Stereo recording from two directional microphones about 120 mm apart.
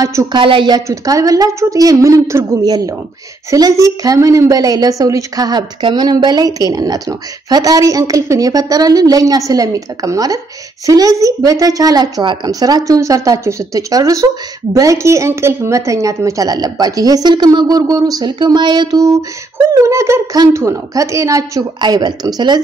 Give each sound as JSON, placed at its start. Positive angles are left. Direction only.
{"t": 0.0, "sound": "a woman's voice", "side_deg": -30}
{"t": 0.4, "sound": "a woman's voice", "side_deg": -45}